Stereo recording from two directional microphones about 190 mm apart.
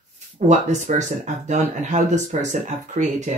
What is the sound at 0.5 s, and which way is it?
Speech, 40° right (ahead or behind).